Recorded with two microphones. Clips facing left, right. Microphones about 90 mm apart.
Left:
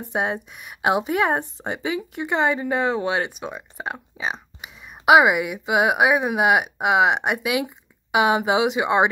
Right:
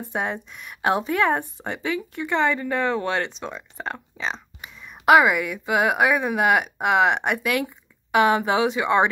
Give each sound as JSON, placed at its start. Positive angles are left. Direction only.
{"t": 0.1, "sound": "speech", "side_deg": 15}